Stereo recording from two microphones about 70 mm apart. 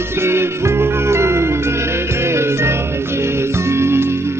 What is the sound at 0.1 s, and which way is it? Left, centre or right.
Music, right.